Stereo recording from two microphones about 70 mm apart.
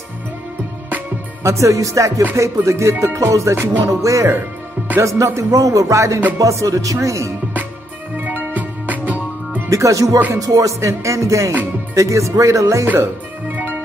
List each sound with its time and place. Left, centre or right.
1.4 s music: right
8.2 s music: right
9.7 s music: right
12.8 s music: right